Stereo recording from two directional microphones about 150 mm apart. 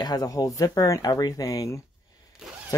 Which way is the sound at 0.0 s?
25° left (ahead or behind).